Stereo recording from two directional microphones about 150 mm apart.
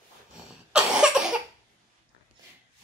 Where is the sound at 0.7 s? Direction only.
5° right (ahead or behind).